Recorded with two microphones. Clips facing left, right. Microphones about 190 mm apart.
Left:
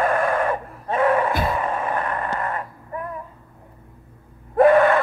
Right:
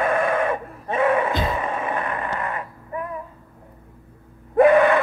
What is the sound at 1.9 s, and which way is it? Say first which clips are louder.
Vehicle: left 1 dB; 45° left (ahead or behind).